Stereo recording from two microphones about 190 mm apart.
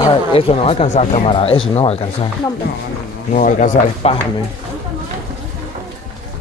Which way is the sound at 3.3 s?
40° left (ahead or behind).